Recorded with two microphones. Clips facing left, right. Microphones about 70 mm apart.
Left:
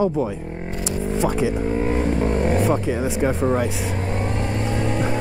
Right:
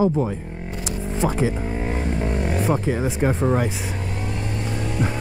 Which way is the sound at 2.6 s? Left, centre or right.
Centre.